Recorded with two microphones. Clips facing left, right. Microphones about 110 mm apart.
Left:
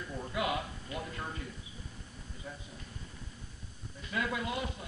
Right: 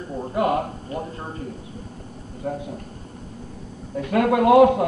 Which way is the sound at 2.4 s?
65° right (ahead or behind).